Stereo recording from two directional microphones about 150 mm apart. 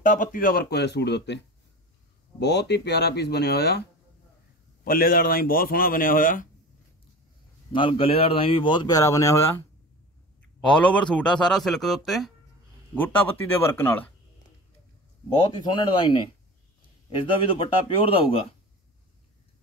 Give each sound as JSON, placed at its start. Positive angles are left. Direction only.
{"t": 0.0, "sound": "speech", "side_deg": 60}
{"t": 2.5, "sound": "speech", "side_deg": 90}
{"t": 4.8, "sound": "speech", "side_deg": 75}
{"t": 7.7, "sound": "speech", "side_deg": 35}
{"t": 10.6, "sound": "speech", "side_deg": 5}
{"t": 12.9, "sound": "speech", "side_deg": 15}
{"t": 15.5, "sound": "speech", "side_deg": 30}